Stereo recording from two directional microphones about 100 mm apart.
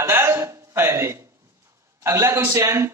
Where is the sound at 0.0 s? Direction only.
25° right (ahead or behind).